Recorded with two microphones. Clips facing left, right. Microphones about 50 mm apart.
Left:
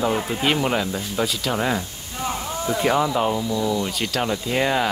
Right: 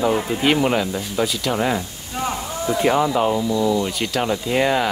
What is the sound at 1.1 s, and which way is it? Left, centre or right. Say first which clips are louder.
Speech: right 2 dB; centre.